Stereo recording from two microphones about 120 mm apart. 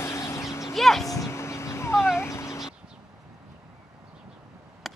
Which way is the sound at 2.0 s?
20° left (ahead or behind).